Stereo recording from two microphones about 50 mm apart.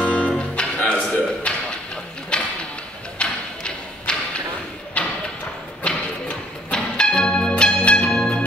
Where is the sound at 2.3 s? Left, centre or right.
Centre.